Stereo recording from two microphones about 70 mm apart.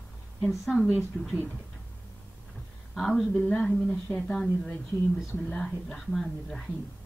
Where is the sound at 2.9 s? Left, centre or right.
Centre.